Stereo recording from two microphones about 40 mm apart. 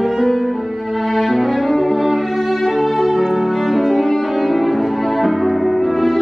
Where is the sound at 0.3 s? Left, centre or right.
Centre.